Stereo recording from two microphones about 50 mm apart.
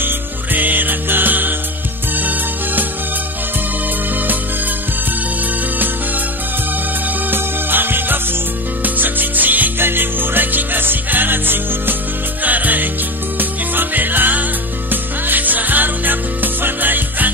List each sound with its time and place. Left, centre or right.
0.0 s music: right
7.2 s music: right